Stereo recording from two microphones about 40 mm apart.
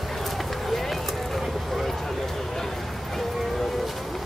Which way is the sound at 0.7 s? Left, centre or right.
Centre.